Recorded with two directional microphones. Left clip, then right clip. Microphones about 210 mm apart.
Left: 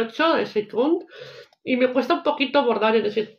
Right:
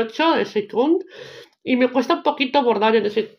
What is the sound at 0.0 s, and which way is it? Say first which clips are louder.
Speech: right 2 dB; 35° right (ahead or behind).